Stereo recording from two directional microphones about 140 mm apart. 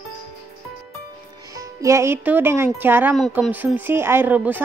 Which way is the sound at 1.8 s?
20° right (ahead or behind).